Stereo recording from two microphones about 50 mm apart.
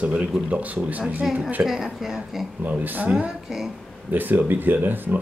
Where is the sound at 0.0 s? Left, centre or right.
Right.